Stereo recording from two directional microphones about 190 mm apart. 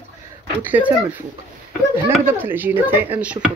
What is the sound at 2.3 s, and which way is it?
Speech, 10° right (ahead or behind).